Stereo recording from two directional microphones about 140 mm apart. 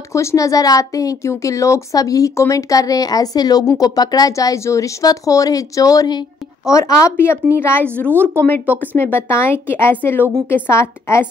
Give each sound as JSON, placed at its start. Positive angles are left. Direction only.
{"t": 0.1, "sound": "speech", "side_deg": 20}
{"t": 8.1, "sound": "speech", "side_deg": -15}
{"t": 8.7, "sound": "speech", "side_deg": 15}